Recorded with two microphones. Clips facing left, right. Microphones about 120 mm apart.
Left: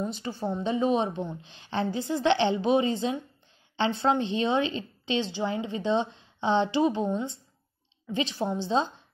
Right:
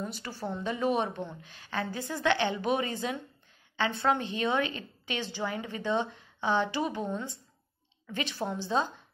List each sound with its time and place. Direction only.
0.0 s a woman's voice: 20° left (ahead or behind)